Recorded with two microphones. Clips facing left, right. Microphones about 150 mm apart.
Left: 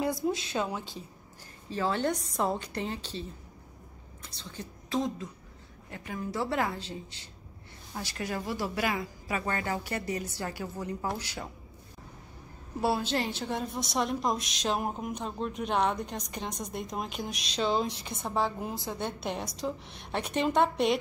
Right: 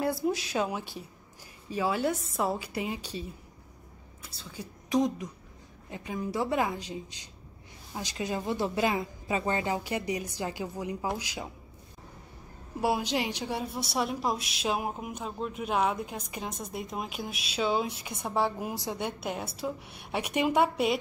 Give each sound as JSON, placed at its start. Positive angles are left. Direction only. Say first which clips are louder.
{"t": 0.5, "sound": "a woman's voice", "louder": "right 2 dB", "side_deg": -10}
{"t": 12.8, "sound": "a woman's voice", "louder": "even", "side_deg": -15}